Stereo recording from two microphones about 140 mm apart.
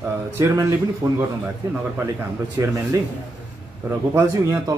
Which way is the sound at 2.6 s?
25° right (ahead or behind).